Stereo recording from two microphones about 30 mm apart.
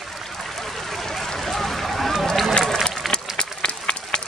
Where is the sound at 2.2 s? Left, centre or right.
Centre.